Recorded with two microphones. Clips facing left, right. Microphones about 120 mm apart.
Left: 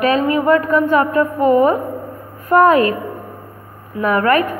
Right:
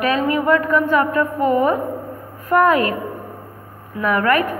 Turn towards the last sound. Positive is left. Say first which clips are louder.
# left 3 dB
turn(degrees=30)  # may be behind; listen again after turning